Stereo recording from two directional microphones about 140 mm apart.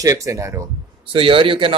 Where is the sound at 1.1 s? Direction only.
40° right (ahead or behind).